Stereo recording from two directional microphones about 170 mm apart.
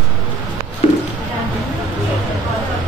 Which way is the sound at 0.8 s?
35° left (ahead or behind).